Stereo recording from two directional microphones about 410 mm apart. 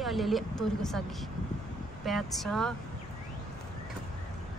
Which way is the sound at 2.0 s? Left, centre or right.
Centre.